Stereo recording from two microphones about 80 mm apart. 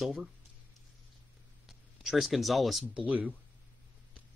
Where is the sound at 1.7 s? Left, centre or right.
Centre.